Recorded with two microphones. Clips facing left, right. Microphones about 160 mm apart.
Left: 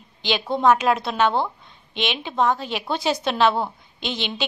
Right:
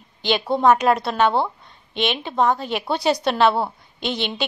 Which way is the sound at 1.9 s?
45° right (ahead or behind).